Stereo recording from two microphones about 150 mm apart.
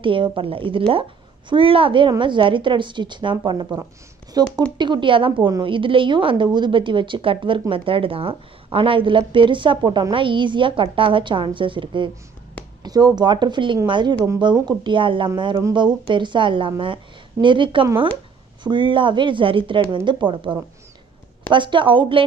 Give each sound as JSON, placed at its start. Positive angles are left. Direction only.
{"t": 0.0, "sound": "a woman's voice", "side_deg": -35}